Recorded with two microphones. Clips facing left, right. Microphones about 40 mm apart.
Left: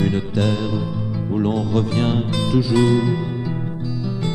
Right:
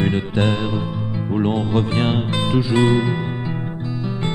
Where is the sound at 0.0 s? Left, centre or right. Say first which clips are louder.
Right 1 dB; right.